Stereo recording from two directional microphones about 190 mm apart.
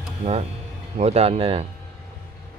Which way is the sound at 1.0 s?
35° right (ahead or behind).